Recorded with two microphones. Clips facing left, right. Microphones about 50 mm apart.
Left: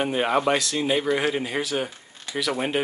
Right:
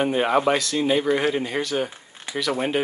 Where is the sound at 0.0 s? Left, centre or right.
Centre.